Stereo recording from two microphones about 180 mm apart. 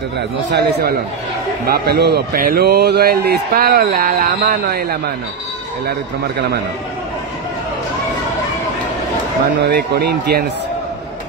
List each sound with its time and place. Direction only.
0.5 s a man's voice: 60° right (ahead or behind)
9.6 s a man's voice: 60° right (ahead or behind)